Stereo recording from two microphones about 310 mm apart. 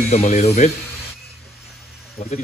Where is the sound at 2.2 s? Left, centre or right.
Centre.